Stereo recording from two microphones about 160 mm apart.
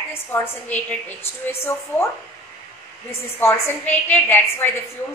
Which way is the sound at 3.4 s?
15° left (ahead or behind).